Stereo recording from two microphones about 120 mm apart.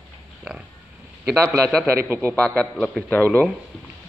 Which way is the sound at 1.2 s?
20° right (ahead or behind).